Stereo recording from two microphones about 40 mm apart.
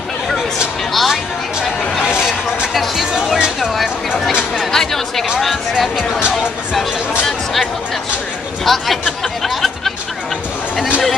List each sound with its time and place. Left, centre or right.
0.9 s speech: centre
2.0 s a sound: right
2.7 s speech: centre
3.3 s speech: centre
4.7 s speech: centre
5.4 s speech: centre
8.7 s speech: centre
9.2 s a sound: centre